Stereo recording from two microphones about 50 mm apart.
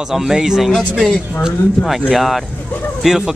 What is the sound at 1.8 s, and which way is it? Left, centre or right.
Speech, centre.